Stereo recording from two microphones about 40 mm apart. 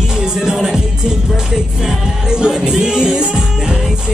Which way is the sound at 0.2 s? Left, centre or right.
Centre.